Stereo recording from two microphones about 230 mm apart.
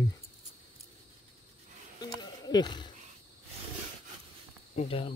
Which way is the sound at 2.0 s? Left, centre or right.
Centre.